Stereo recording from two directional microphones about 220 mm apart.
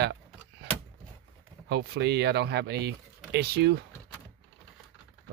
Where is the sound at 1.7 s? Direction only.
50° right (ahead or behind).